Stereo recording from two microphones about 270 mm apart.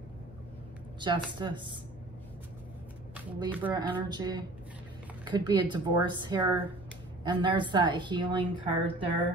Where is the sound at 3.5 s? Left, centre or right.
Centre.